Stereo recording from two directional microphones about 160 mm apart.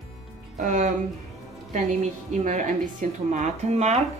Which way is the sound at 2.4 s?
55° right (ahead or behind).